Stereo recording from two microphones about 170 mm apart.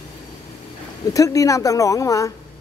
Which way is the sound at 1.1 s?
20° left (ahead or behind).